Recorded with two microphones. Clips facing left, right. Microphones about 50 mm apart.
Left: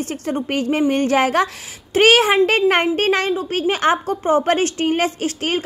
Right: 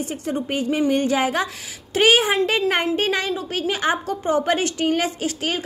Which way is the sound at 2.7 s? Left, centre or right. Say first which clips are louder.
Left 4 dB; left.